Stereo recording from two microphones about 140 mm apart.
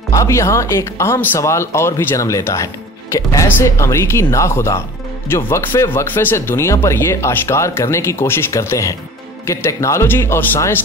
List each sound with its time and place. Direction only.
0.1 s speech: 20° left (ahead or behind)